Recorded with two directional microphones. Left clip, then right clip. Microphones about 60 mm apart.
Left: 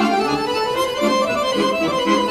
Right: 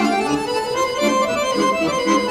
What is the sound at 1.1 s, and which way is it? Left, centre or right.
Music, right.